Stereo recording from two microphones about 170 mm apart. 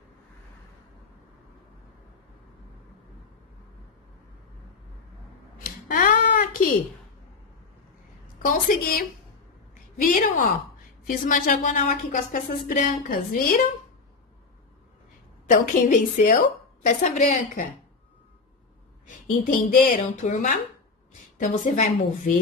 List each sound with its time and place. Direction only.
5.9 s a sound: 50° left (ahead or behind)
8.4 s a woman's voice: 55° left (ahead or behind)
10.0 s speech: 55° left (ahead or behind)
15.5 s speech: 50° left (ahead or behind)
19.0 s speech: 50° left (ahead or behind)